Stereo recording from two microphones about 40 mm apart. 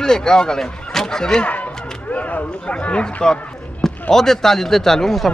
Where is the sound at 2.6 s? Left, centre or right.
Left.